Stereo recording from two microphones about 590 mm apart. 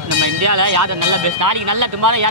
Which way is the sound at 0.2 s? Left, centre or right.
Right.